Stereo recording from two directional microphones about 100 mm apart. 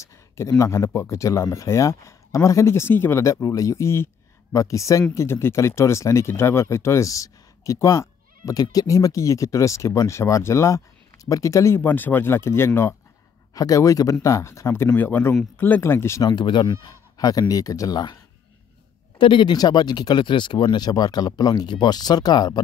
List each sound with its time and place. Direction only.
0.0 s speech: 30° left (ahead or behind)
13.6 s speech: 35° left (ahead or behind)
16.2 s speech: 45° left (ahead or behind)
19.1 s speech: 60° left (ahead or behind); by 22.6 s 40° left (ahead or behind)